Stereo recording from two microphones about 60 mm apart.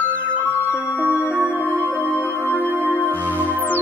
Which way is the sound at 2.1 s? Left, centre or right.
Left.